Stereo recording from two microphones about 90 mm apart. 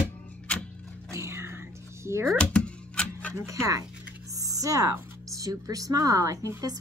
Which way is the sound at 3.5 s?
35° right (ahead or behind).